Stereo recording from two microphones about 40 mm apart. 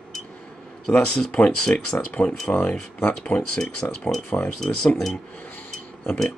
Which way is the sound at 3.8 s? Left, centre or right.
Left.